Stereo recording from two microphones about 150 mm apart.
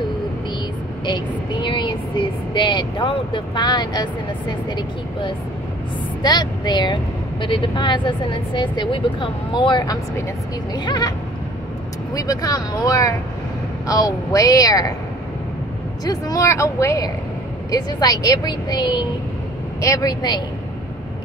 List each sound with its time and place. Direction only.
1.0 s a woman's voice: 30° left (ahead or behind)
16.1 s a woman's voice: 25° left (ahead or behind)